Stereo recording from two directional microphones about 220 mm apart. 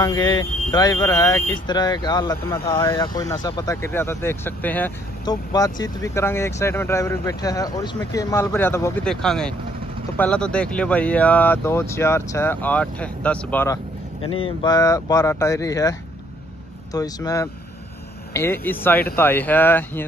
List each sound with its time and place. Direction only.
0.0 s speech: 20° left (ahead or behind)
14.4 s speech: 20° left (ahead or behind)